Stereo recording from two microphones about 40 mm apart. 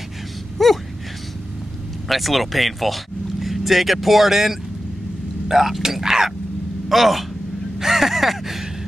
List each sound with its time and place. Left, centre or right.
0.6 s gasp: centre
2.0 s speech: centre
7.8 s a sound: centre